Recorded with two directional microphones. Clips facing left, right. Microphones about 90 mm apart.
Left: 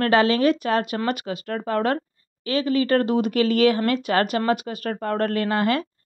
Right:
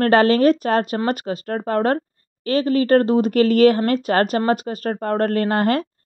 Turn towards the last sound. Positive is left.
turn(degrees=-40)  # may be behind; listen again after turning